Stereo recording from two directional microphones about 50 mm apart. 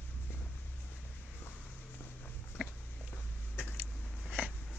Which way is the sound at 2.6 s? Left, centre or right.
Right.